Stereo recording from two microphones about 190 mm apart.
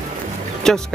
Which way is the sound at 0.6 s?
Centre (ahead or behind).